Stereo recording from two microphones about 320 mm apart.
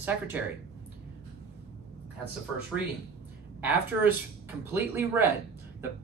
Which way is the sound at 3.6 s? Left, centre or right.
Centre.